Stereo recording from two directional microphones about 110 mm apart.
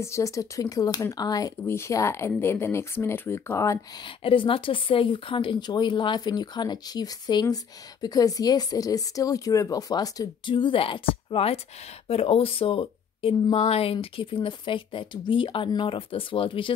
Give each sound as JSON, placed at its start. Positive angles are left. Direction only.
{"t": 0.0, "sound": "speech", "side_deg": 30}
{"t": 4.2, "sound": "speech", "side_deg": 55}
{"t": 10.4, "sound": "speech", "side_deg": 50}